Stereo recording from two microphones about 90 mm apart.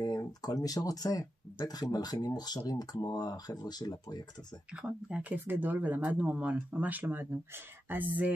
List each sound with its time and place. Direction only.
0.0 s speech: 45° left (ahead or behind)
4.8 s speech: 15° right (ahead or behind)